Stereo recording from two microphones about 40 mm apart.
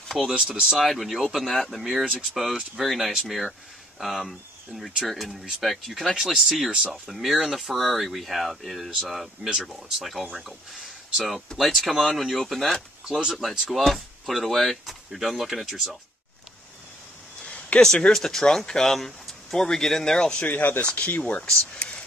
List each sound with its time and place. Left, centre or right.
0.3 s speech: right
0.7 s speech: centre
17.4 s a sound: centre
17.7 s speech: centre
20.4 s speech: left
21.7 s whispering: left